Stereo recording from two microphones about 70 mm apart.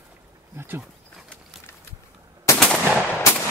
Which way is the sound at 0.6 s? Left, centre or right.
Right.